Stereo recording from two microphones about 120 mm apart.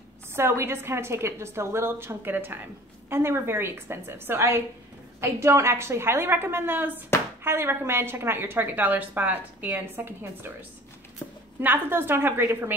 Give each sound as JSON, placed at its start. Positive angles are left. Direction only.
{"t": 0.3, "sound": "a woman's voice", "side_deg": -20}
{"t": 11.2, "sound": "a sound", "side_deg": 15}
{"t": 11.6, "sound": "a woman's voice", "side_deg": -15}